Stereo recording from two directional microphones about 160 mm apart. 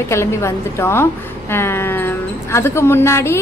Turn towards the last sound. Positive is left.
turn(degrees=15)  # may be behind; listen again after turning